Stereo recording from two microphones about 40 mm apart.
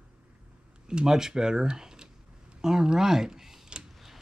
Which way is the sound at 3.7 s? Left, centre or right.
Right.